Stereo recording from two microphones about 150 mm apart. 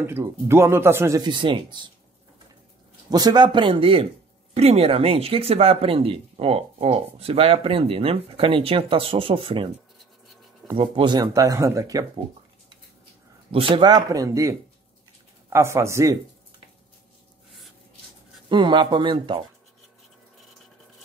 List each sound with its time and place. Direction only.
0.0 s speech: 15° right (ahead or behind)
3.1 s speech: 25° right (ahead or behind)
10.8 s speech: 30° right (ahead or behind)
13.5 s speech: 35° right (ahead or behind); by 16.2 s 20° right (ahead or behind)
18.5 s speech: 30° right (ahead or behind)